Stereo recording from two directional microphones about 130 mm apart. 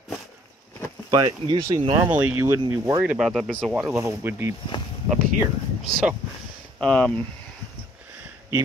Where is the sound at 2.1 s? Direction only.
10° right (ahead or behind).